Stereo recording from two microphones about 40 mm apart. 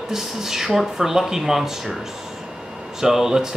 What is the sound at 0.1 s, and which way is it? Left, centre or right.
Speech, centre.